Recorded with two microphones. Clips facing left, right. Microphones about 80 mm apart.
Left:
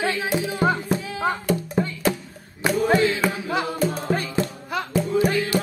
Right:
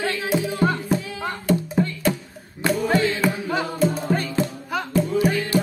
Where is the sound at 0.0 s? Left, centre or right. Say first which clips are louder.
Even; centre.